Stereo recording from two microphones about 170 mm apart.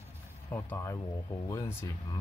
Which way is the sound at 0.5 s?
15° left (ahead or behind).